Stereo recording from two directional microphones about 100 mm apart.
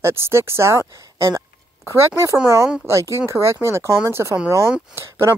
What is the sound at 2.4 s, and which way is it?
Speech, 30° right (ahead or behind).